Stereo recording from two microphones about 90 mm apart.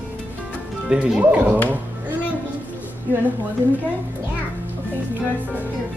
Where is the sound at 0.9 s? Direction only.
10° right (ahead or behind).